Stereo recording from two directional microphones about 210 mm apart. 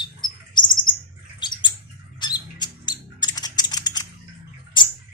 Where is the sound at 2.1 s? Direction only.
20° left (ahead or behind).